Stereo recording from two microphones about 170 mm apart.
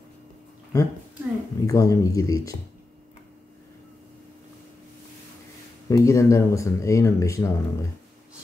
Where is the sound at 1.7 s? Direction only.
20° left (ahead or behind).